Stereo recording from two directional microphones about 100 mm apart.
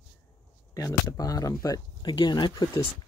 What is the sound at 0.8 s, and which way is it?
Speech, 35° left (ahead or behind).